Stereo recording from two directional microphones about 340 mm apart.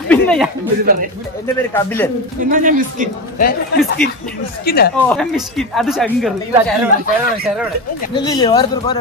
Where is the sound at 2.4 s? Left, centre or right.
Right.